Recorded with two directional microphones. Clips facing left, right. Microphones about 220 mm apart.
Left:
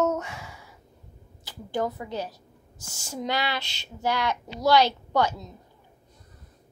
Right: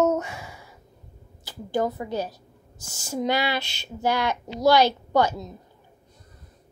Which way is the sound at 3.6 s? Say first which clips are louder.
Right 5 dB; 55° right (ahead or behind).